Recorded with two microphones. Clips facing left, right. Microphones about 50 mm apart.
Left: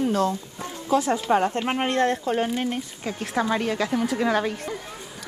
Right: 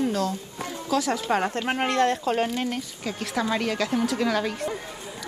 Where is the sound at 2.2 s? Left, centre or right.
Right.